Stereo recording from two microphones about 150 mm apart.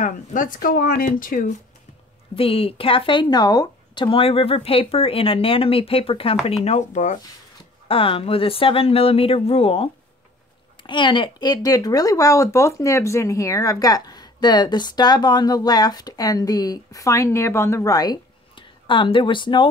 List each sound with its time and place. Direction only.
0.0 s speech: 60° left (ahead or behind)
2.3 s speech: 40° left (ahead or behind)
7.9 s speech: 40° left (ahead or behind)